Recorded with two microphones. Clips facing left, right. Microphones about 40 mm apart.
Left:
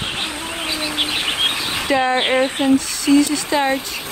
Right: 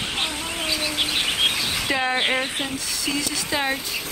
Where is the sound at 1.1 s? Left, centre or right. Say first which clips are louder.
Left 1 dB; centre.